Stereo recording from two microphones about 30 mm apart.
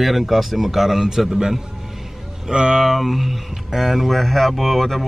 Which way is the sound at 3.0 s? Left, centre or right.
Centre.